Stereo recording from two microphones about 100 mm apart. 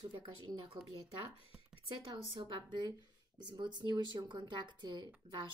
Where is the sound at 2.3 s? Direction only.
50° right (ahead or behind).